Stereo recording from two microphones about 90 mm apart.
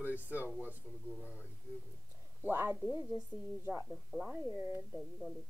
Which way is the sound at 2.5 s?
20° right (ahead or behind).